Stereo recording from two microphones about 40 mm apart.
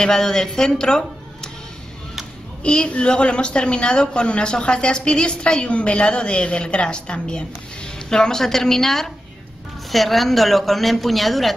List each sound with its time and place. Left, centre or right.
0.0 s speech: centre
2.6 s speech: left; by 11.5 s centre